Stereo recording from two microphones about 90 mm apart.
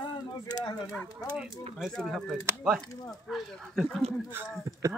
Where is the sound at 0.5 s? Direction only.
45° left (ahead or behind).